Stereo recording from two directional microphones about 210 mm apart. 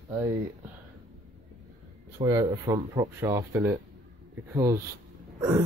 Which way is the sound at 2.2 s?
20° right (ahead or behind).